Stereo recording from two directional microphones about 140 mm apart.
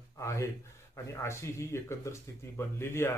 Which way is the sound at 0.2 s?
20° left (ahead or behind).